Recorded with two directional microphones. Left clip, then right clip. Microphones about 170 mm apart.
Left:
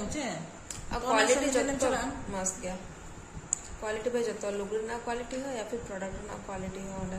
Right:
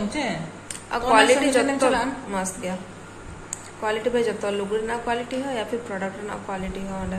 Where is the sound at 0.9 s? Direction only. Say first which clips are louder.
Right 9 dB; 5° right (ahead or behind).